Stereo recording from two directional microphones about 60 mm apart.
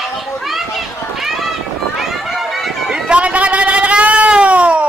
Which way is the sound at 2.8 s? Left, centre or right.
Centre.